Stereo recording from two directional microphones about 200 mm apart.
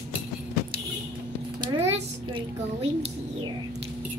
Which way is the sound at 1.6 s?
25° right (ahead or behind).